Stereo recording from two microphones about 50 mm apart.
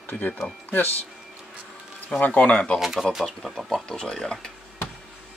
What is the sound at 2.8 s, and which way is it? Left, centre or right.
Speech, centre.